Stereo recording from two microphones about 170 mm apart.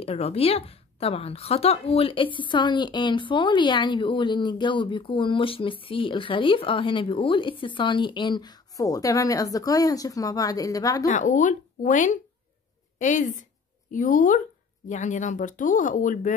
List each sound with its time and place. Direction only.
0.0 s a woman's voice: 40° left (ahead or behind); by 11.1 s 20° left (ahead or behind)
11.1 s speech: 45° left (ahead or behind)